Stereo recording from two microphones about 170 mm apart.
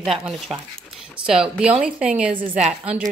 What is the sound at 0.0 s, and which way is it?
A woman's voice, centre (ahead or behind).